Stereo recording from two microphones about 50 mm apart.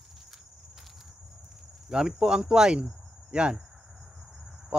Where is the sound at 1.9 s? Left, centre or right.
Centre.